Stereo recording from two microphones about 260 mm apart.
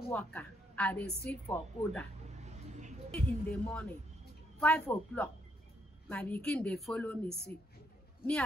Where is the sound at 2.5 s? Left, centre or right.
Right.